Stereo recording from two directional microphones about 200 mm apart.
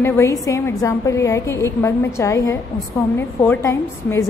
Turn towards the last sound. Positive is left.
turn(degrees=15)  # may be behind; listen again after turning